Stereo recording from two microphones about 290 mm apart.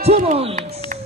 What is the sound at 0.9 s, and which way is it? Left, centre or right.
Music, right.